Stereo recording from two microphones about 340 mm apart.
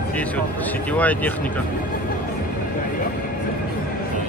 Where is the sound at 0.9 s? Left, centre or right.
Centre.